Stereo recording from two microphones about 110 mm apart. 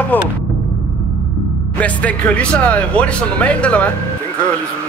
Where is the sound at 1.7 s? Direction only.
10° left (ahead or behind).